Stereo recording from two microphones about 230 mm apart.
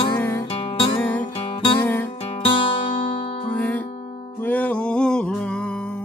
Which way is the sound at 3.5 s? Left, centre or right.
Centre.